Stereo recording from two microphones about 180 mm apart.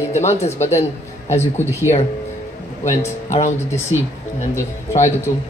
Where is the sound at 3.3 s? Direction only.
40° left (ahead or behind).